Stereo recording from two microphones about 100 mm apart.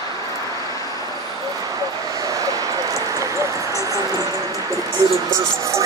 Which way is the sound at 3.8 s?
35° right (ahead or behind).